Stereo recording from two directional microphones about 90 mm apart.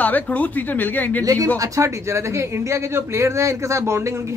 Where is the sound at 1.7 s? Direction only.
35° right (ahead or behind).